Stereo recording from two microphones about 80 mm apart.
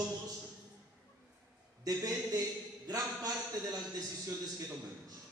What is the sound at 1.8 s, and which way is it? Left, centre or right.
A man's voice, right.